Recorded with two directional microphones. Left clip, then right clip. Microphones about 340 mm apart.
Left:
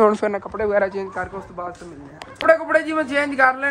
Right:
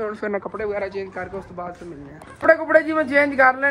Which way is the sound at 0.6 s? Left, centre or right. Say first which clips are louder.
Left 6 dB; centre.